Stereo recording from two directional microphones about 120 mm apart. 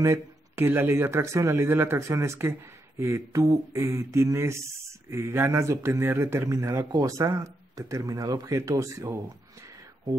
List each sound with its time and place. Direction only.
0.0 s speech: 25° right (ahead or behind)